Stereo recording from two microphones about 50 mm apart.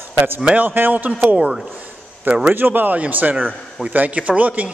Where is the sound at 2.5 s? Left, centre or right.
Right.